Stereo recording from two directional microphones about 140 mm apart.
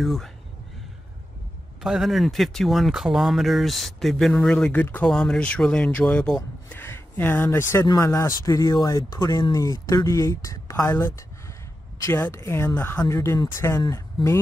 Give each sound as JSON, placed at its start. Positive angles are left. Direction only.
{"t": 0.0, "sound": "speech", "side_deg": 0}
{"t": 1.8, "sound": "speech", "side_deg": -5}